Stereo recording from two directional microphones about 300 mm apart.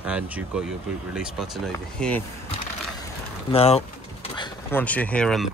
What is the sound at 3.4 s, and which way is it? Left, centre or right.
Speech, centre.